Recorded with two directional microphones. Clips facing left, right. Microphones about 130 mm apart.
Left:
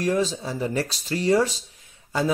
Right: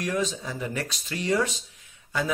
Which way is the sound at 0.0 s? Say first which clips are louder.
Left 5 dB; 30° left (ahead or behind).